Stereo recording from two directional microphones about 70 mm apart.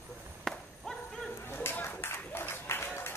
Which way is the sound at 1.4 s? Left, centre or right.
Left.